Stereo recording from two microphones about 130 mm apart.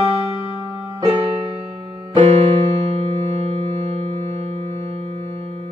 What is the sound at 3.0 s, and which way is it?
Music, 60° right (ahead or behind).